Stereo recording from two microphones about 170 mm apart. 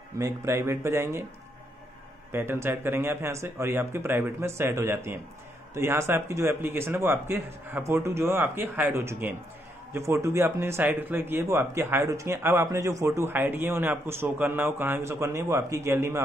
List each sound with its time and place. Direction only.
0.2 s speech: 15° right (ahead or behind)
2.3 s speech: 15° right (ahead or behind)